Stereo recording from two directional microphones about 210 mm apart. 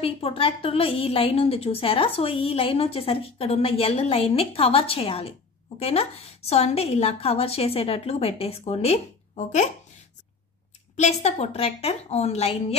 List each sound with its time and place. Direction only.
0.0 s a woman's voice: 25° left (ahead or behind)
11.0 s speech: 30° left (ahead or behind)